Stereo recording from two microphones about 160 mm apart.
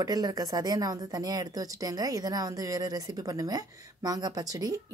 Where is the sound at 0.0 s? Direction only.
20° right (ahead or behind).